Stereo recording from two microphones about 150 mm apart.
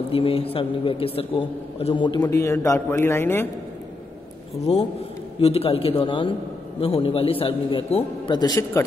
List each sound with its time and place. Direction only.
0.1 s a man's voice: 40° left (ahead or behind)
2.2 s a man's voice: 20° left (ahead or behind)
4.7 s a man's voice: 40° left (ahead or behind); by 8.8 s 25° left (ahead or behind)